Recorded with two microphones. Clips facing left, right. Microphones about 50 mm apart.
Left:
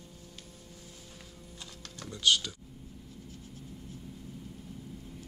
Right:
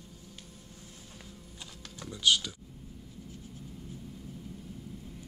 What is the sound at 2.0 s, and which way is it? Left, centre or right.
Typing, centre.